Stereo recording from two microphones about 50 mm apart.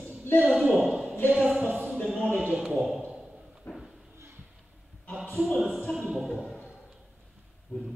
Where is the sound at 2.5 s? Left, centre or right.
Centre.